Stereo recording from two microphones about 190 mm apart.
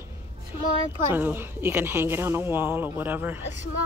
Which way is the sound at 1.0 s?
10° right (ahead or behind).